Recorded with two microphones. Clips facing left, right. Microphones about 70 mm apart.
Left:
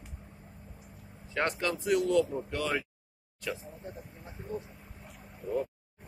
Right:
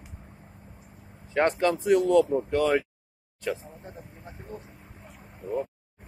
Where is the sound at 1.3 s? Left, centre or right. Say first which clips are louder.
Right 8 dB; right.